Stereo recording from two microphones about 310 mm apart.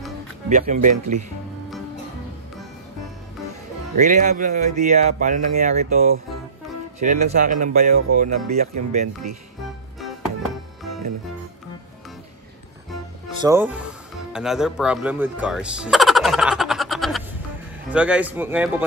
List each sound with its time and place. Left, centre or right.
0.5 s speech: right
4.0 s speech: right
13.4 s a man's voice: centre